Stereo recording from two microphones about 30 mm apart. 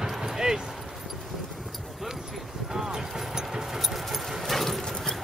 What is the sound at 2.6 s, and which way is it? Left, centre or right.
Vehicle, centre.